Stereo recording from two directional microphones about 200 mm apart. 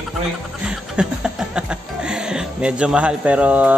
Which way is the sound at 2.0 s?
5° right (ahead or behind).